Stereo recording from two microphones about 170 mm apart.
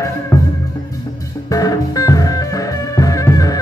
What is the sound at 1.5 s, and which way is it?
Music, 20° left (ahead or behind).